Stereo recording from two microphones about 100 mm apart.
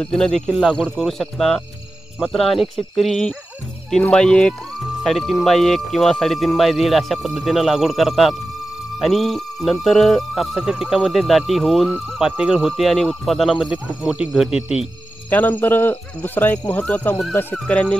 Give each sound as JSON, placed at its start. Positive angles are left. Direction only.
{"t": 0.0, "sound": "speech", "side_deg": 5}
{"t": 15.2, "sound": "speech", "side_deg": 15}